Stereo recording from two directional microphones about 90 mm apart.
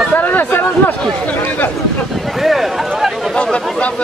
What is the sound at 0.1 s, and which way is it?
Speech, 20° left (ahead or behind).